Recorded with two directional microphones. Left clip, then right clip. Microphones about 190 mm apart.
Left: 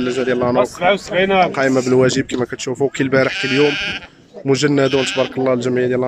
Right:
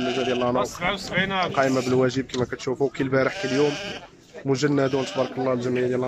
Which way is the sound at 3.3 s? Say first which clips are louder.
Left 8 dB; 35° right (ahead or behind).